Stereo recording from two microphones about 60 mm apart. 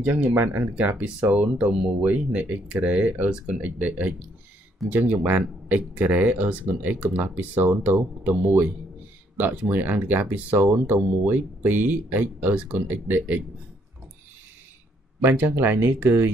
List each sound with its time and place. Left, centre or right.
0.0 s speech: right
15.2 s speech: right